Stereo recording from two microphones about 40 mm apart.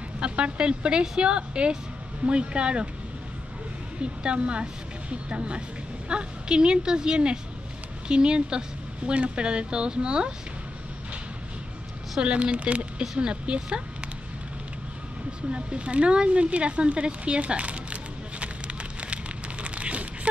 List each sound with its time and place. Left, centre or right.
0.2 s speech: right
4.0 s speech: right
12.2 s speech: right
13.0 s speech: centre
13.3 s speech: right
15.5 s speech: right
18.4 s a sound: right